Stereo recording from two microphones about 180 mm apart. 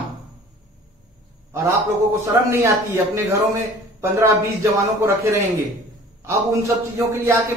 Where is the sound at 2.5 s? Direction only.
15° right (ahead or behind).